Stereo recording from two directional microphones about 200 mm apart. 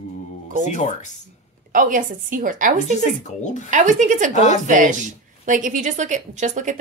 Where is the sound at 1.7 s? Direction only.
40° right (ahead or behind).